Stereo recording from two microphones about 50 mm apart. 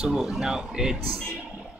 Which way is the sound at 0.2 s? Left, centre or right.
Centre.